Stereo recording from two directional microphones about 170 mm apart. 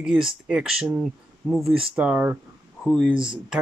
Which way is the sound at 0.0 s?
5° right (ahead or behind).